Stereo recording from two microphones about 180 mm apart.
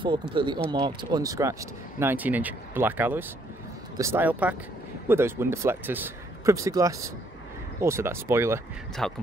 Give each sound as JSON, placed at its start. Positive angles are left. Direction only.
{"t": 0.0, "sound": "speech", "side_deg": -30}
{"t": 9.0, "sound": "a man's voice", "side_deg": 5}